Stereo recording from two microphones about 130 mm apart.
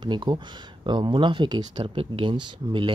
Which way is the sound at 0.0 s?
35° right (ahead or behind).